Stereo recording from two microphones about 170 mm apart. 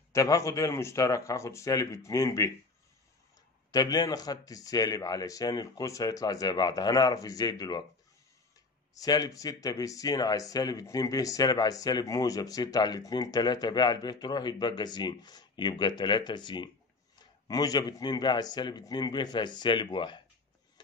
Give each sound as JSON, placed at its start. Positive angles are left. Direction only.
{"t": 0.1, "sound": "speech", "side_deg": 20}
{"t": 3.7, "sound": "speech", "side_deg": 20}
{"t": 8.9, "sound": "speech", "side_deg": 20}